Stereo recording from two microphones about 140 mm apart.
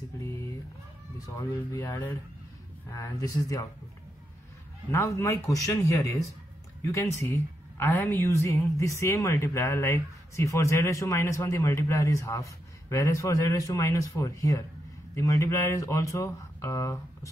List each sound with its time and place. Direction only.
1.2 s a woman's voice: 25° left (ahead or behind)
4.9 s a woman's voice: 20° left (ahead or behind)